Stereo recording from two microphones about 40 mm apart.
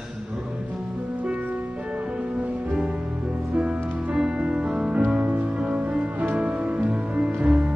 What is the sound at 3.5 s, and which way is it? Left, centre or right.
Music, right.